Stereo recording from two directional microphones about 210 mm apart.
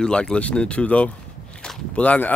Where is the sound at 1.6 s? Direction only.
5° left (ahead or behind).